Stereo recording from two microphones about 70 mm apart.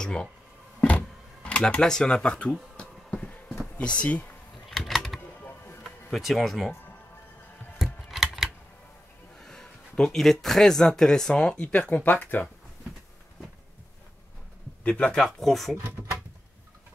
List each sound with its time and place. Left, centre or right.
0.0 s speech: centre
0.7 s a sound: centre
2.8 s bee: centre
4.6 s typing: centre
6.1 s speech: centre
7.8 s scissors: centre
9.4 s a sound: centre
10.4 s speech: centre; by 12.4 s left
14.8 s speech: centre
15.1 s speech: centre